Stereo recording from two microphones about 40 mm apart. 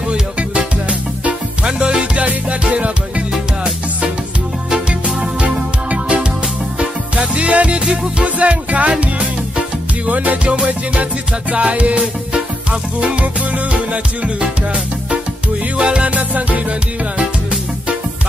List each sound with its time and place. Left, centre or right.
1.6 s music: right
5.4 s music: right
10.0 s music: right
15.8 s music: right
16.2 s music: right